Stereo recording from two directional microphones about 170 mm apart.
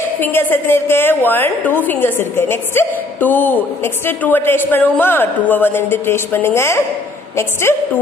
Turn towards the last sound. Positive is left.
turn(degrees=15)  # may be behind; listen again after turning